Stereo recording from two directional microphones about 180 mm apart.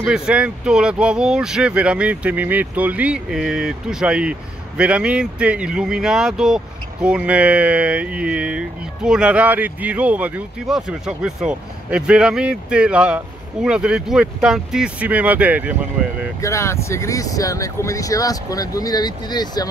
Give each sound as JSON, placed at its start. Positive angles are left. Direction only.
{"t": 0.0, "sound": "speech", "side_deg": -5}
{"t": 16.3, "sound": "speech", "side_deg": 15}